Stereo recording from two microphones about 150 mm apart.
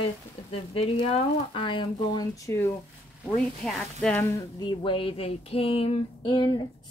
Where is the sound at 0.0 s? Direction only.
40° left (ahead or behind); by 2.7 s 20° left (ahead or behind).